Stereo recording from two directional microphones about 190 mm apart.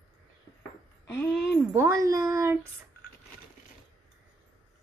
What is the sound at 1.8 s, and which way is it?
Speech, 15° right (ahead or behind).